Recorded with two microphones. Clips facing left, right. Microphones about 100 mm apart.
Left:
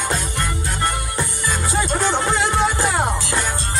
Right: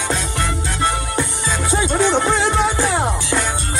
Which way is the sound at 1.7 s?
20° right (ahead or behind).